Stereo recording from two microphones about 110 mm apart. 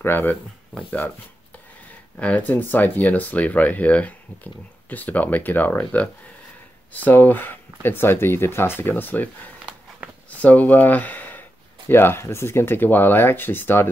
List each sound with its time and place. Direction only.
0.0 s speech: 20° left (ahead or behind)
2.1 s speech: 10° left (ahead or behind)
7.1 s speech: 20° left (ahead or behind)